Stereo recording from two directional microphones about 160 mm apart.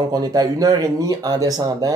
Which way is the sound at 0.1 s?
25° right (ahead or behind).